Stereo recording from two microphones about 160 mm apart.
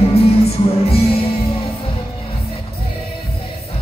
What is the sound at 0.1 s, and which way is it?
Music, 40° left (ahead or behind).